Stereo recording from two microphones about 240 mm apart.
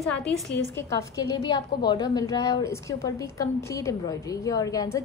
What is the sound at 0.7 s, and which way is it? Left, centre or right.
A woman's voice, centre.